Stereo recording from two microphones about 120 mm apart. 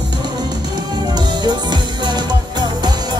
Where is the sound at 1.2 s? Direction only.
35° right (ahead or behind).